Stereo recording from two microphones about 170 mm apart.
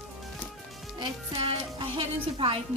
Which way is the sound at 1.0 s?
30° right (ahead or behind).